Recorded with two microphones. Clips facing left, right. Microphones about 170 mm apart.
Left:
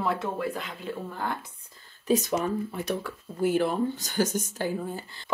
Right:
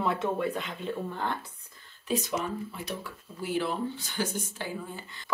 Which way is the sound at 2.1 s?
45° left (ahead or behind).